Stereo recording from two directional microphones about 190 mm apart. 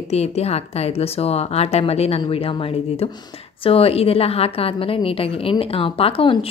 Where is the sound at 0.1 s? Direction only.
35° left (ahead or behind).